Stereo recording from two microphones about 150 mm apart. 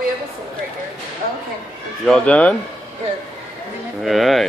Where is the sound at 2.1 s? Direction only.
10° left (ahead or behind).